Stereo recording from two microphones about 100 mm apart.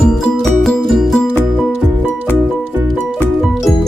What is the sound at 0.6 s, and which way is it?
Music, centre (ahead or behind).